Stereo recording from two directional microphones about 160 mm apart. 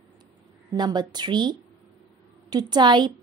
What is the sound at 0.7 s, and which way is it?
A woman's voice, 25° right (ahead or behind).